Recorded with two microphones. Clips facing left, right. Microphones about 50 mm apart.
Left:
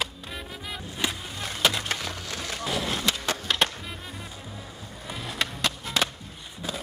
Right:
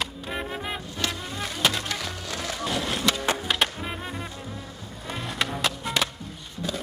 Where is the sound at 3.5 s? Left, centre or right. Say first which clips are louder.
Left 3 dB; centre.